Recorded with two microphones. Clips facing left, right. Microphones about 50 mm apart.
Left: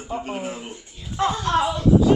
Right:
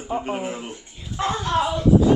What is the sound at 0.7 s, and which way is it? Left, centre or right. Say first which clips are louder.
Speech: even; right.